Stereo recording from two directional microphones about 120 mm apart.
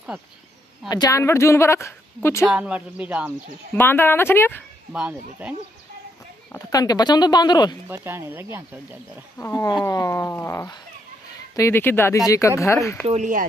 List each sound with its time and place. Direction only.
0.8 s a woman's voice: 35° left (ahead or behind)
2.4 s speech: 10° right (ahead or behind)
3.7 s a woman's voice: 20° left (ahead or behind)
4.9 s speech: 10° right (ahead or behind)
6.7 s speech: 30° left (ahead or behind)
7.9 s speech: 20° right (ahead or behind)
9.4 s a woman's voice: 25° left (ahead or behind)
13.0 s speech: 80° right